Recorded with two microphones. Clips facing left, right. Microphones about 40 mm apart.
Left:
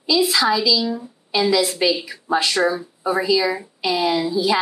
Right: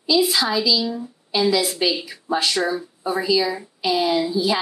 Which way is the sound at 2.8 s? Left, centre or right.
Left.